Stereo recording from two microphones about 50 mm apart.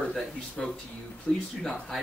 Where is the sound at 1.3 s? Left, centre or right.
Left.